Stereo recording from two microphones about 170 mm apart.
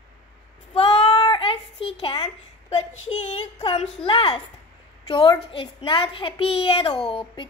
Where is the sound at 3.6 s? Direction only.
35° left (ahead or behind).